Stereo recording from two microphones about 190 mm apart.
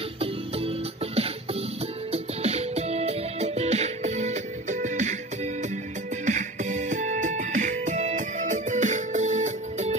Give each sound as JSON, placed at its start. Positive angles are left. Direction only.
{"t": 0.2, "sound": "music", "side_deg": -30}
{"t": 6.2, "sound": "music", "side_deg": -40}